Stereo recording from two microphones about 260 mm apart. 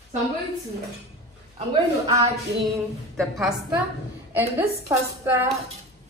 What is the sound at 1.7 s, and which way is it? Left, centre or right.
Speech, centre.